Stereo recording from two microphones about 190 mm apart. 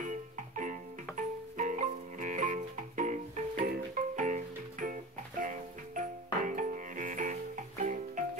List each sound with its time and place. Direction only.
0.0 s music: 45° right (ahead or behind)